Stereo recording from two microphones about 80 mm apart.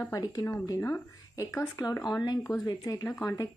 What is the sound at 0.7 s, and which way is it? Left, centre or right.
Speech, left.